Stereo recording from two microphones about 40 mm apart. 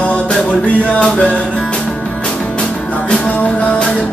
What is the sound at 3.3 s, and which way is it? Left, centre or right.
Music, left.